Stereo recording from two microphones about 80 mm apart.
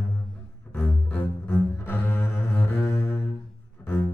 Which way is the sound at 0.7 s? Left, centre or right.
Left.